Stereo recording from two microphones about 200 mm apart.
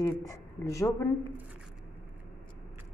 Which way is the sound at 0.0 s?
15° left (ahead or behind).